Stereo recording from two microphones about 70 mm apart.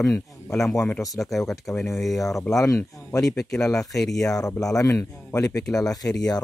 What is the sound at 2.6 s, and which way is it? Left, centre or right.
Speech, left.